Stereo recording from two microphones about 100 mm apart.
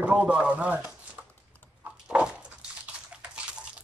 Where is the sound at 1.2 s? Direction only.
15° right (ahead or behind).